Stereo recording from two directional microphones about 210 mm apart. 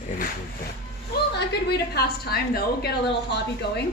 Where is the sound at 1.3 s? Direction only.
50° left (ahead or behind).